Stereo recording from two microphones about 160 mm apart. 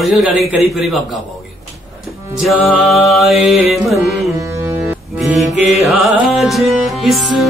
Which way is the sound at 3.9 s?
20° right (ahead or behind).